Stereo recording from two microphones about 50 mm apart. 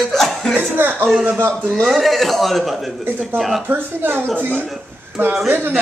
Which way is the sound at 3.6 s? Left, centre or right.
Right.